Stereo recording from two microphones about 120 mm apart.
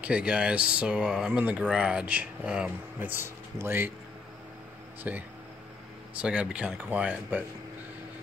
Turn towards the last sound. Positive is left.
turn(degrees=-10)  # may be behind; listen again after turning